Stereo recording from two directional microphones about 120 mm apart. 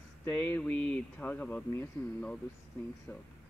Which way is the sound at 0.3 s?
10° left (ahead or behind).